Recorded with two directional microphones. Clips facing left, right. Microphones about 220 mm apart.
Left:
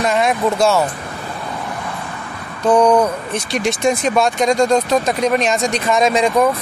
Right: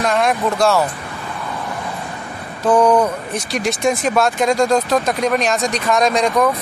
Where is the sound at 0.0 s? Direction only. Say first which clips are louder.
Left 1 dB; centre (ahead or behind).